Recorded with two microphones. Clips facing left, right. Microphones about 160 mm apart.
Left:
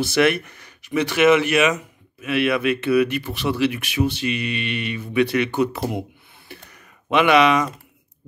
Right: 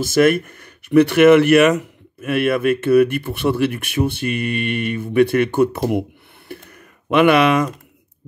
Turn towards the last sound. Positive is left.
turn(degrees=-55)  # may be behind; listen again after turning